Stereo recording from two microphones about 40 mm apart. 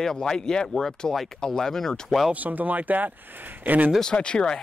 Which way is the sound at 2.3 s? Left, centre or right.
Right.